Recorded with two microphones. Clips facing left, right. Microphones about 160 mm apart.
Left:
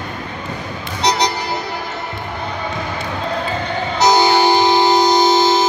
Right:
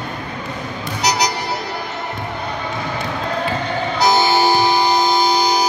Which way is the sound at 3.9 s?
20° left (ahead or behind).